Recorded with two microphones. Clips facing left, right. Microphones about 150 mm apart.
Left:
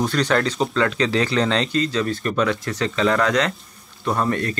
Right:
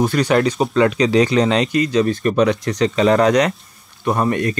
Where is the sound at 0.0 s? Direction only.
10° right (ahead or behind).